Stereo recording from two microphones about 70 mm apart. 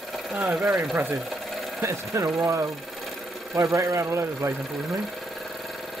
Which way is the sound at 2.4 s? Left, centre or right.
Right.